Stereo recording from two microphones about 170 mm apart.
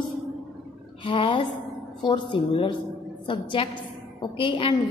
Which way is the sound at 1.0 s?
30° left (ahead or behind).